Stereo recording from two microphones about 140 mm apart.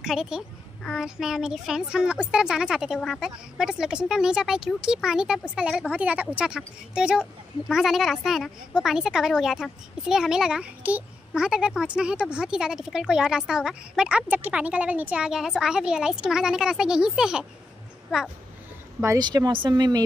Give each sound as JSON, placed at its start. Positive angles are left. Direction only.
{"t": 0.0, "sound": "a child's voice", "side_deg": -5}
{"t": 18.9, "sound": "speech", "side_deg": -25}